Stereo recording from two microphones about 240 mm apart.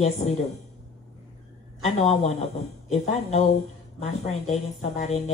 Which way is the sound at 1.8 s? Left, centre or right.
Left.